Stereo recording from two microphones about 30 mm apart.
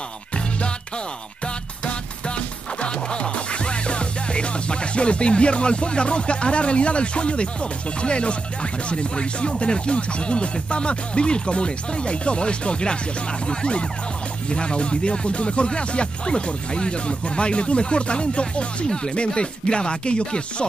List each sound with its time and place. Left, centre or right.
2.8 s music: left
8.0 s speech: left